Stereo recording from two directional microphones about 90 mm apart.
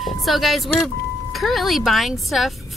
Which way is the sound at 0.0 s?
Centre (ahead or behind).